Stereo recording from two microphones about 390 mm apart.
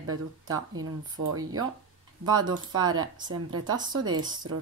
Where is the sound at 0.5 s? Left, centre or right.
Right.